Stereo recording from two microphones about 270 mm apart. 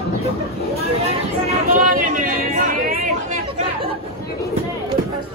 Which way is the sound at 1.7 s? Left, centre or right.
Right.